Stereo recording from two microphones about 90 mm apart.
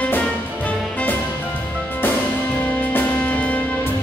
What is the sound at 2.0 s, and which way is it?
Music, 20° left (ahead or behind).